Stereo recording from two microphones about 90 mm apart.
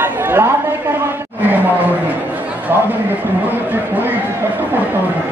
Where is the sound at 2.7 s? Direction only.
25° right (ahead or behind).